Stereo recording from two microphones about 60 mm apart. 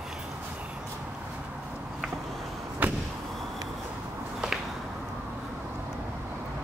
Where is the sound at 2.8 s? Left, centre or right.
Right.